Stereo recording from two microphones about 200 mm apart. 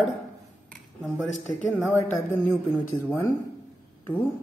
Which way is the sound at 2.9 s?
20° left (ahead or behind).